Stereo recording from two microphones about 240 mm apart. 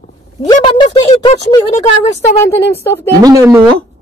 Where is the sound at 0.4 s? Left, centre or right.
Centre.